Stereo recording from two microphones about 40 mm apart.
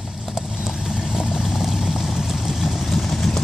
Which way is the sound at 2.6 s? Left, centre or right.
Centre.